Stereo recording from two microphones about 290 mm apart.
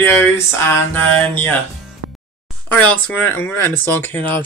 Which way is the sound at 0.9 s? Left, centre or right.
Centre.